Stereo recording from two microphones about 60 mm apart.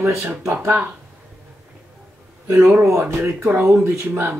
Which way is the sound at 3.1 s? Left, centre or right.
Right.